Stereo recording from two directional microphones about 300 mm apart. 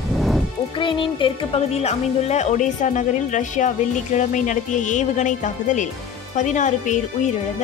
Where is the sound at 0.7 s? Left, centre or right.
Centre.